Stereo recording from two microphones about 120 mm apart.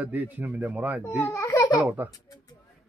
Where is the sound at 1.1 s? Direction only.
20° left (ahead or behind).